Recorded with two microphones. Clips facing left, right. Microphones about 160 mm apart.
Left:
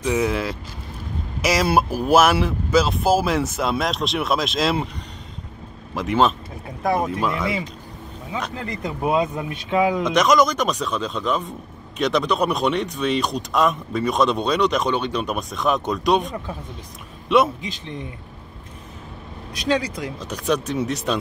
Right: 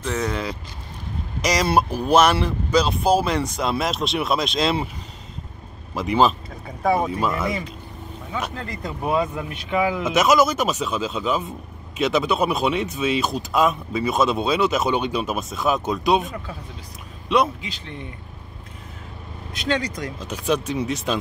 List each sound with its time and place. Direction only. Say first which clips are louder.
0.0 s speech: left 4 dB; 10° left (ahead or behind)
5.9 s speech: even; centre (ahead or behind)
8.6 s speech: left 2 dB; 20° left (ahead or behind)
10.0 s speech: even; 5° right (ahead or behind)
19.7 s speech: left 2 dB; 10° left (ahead or behind)
20.2 s speech: even; centre (ahead or behind)